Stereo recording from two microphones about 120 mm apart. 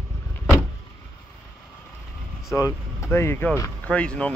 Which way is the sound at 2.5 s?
25° left (ahead or behind).